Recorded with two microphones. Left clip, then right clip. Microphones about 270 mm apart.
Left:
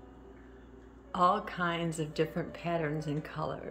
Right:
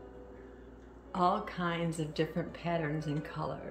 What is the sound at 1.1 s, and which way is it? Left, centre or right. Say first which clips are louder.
A woman's voice: left 3 dB; centre.